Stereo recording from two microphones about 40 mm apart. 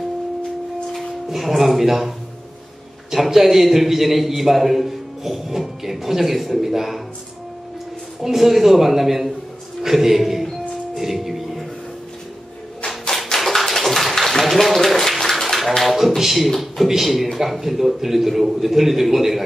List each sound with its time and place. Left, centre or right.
1.3 s a man's voice: centre
8.2 s a man's voice: centre
11.0 s music: centre
13.4 s tap: centre
14.4 s a sound: centre
16.2 s a man's voice: centre